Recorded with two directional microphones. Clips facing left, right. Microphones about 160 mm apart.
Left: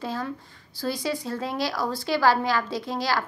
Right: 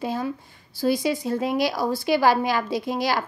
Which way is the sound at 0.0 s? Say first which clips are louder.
Right 4 dB; 15° right (ahead or behind).